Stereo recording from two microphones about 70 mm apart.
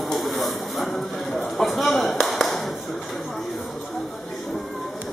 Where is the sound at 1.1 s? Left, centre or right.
Centre.